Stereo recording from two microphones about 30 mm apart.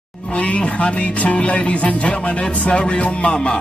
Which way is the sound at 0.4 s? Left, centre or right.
Left.